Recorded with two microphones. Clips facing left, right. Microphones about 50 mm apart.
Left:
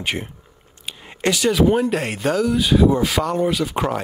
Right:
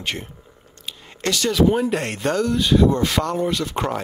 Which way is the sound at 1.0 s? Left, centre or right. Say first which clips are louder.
Left 3 dB; centre.